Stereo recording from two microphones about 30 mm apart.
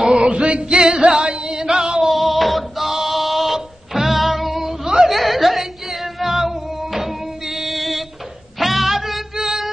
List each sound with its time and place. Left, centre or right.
0.0 s music: right
0.7 s music: right
1.5 s chant: right
2.0 s a sound: centre
3.5 s music: centre